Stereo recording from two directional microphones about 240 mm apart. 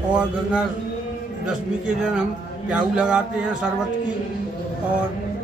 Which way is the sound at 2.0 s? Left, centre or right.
Centre.